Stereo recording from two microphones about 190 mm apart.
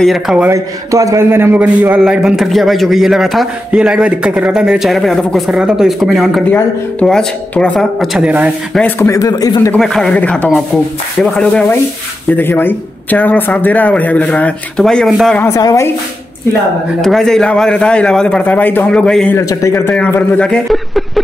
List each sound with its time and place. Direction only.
0.0 s a man's voice: centre (ahead or behind)
0.5 s a man's voice: 15° right (ahead or behind)
8.7 s a man's voice: 10° left (ahead or behind)
9.7 s a man's voice: 5° left (ahead or behind)
17.0 s a man's voice: centre (ahead or behind)
19.3 s a man's voice: 15° left (ahead or behind); by 21.2 s centre (ahead or behind)